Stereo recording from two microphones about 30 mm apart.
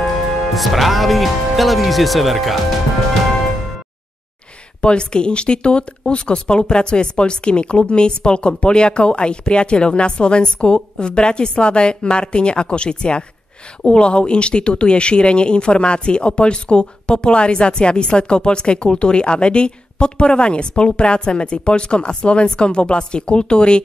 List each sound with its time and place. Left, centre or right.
0.6 s speech: centre
4.8 s speech: left